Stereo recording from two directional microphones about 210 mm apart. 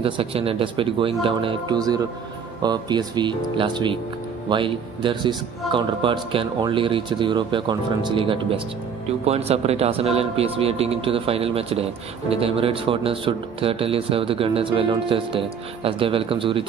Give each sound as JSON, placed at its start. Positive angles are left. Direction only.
{"t": 0.0, "sound": "speech", "side_deg": -25}